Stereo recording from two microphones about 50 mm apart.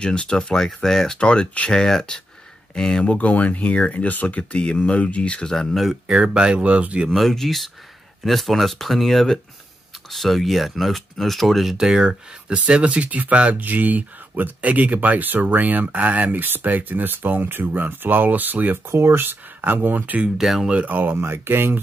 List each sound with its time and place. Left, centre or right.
0.0 s speech: centre
1.7 s speech: centre
3.2 s speech: left
5.5 s speech: centre
5.9 s speech: centre
7.2 s speech: centre
11.7 s speech: centre; by 18.8 s right
18.9 s speech: right
20.3 s speech: centre
20.6 s speech: right
20.9 s speech: right